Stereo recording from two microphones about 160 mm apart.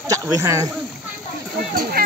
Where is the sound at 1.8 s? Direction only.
70° right (ahead or behind).